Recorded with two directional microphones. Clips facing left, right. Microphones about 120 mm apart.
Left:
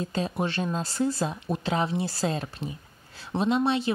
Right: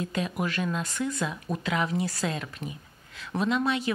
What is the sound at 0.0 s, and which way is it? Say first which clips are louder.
A woman's voice: left 1 dB; 30° left (ahead or behind).